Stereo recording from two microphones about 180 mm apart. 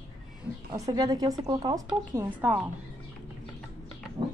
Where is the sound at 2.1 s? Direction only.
10° right (ahead or behind).